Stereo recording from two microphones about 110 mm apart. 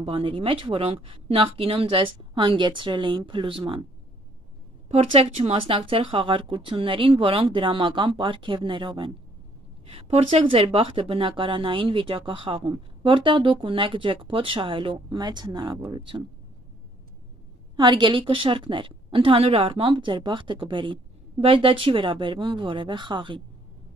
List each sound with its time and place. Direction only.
0.0 s speech: 60° right (ahead or behind)
4.8 s speech: 70° right (ahead or behind); by 9.1 s 50° right (ahead or behind)
9.8 s speech: 65° right (ahead or behind); by 16.3 s 50° right (ahead or behind)
17.7 s speech: 45° right (ahead or behind)